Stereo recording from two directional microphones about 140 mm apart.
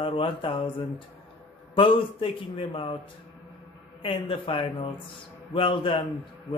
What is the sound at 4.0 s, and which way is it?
Speech, 40° left (ahead or behind).